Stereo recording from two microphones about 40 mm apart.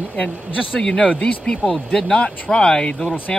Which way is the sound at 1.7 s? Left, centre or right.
Centre.